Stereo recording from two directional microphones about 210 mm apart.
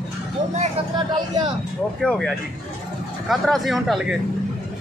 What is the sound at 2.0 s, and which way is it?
Speech, centre (ahead or behind).